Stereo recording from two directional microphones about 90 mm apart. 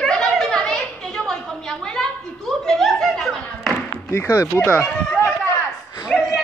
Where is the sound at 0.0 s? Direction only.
5° left (ahead or behind).